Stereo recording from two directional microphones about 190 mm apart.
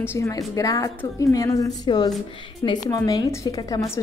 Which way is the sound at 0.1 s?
15° left (ahead or behind).